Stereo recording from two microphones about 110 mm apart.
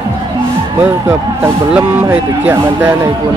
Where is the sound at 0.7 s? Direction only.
20° right (ahead or behind).